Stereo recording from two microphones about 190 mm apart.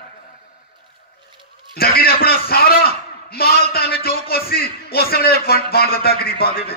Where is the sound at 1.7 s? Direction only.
55° left (ahead or behind).